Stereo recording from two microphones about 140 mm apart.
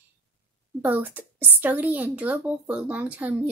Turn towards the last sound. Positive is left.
turn(degrees=-10)  # may be behind; listen again after turning